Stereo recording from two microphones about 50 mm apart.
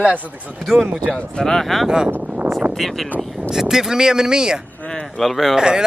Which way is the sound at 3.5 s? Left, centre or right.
Centre.